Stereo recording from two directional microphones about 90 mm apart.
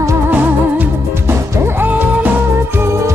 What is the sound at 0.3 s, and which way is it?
Music, 20° right (ahead or behind).